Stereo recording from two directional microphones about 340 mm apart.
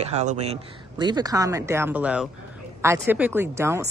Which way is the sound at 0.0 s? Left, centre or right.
Centre.